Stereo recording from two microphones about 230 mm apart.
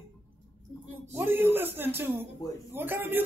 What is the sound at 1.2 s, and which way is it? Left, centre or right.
Speech, centre.